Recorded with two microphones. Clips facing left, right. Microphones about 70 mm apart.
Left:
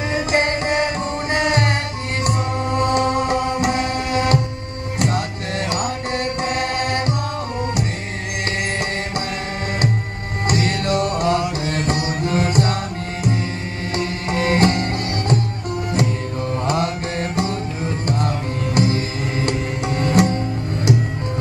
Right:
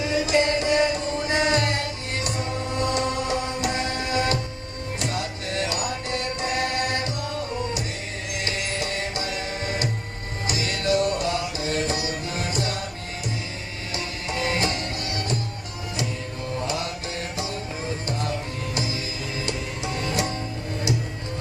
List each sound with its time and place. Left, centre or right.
0.0 s music: left
8.5 s music: left
10.4 s music: left
13.9 s music: left
16.6 s mantra: left
19.4 s music: left